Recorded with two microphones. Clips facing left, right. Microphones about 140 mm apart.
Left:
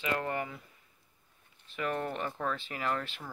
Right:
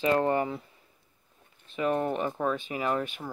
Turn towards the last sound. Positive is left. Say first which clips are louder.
# right 5 dB
turn(degrees=-15)  # may be behind; listen again after turning